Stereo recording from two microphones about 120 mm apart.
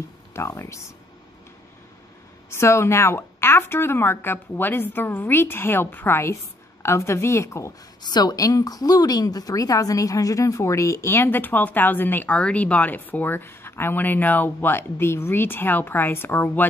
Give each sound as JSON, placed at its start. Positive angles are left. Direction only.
{"t": 0.3, "sound": "a woman's voice", "side_deg": 25}
{"t": 2.5, "sound": "a woman's voice", "side_deg": 20}
{"t": 8.0, "sound": "a woman's voice", "side_deg": 35}